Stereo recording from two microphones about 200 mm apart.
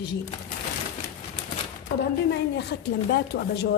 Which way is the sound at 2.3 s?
55° left (ahead or behind).